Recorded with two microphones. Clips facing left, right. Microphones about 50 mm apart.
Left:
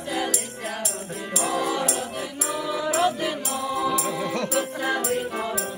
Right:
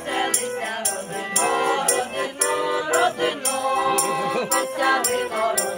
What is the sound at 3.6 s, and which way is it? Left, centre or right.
Music, right.